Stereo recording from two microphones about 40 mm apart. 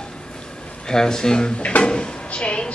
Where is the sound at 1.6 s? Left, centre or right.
Left.